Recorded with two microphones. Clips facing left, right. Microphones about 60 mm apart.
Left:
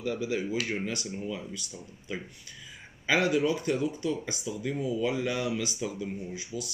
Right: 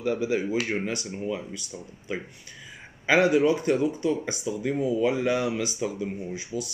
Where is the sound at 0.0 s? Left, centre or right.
Right.